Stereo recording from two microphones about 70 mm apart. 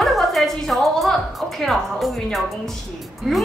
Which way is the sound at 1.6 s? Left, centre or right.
Centre.